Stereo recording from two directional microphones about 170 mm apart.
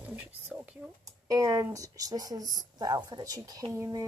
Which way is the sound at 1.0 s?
20° right (ahead or behind).